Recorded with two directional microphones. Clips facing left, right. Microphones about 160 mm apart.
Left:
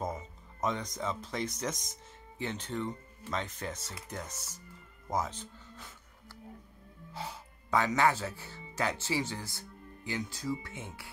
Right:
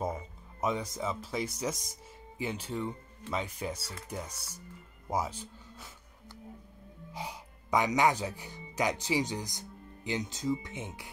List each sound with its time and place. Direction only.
0.0 s speech: 10° right (ahead or behind)
7.1 s speech: 15° right (ahead or behind)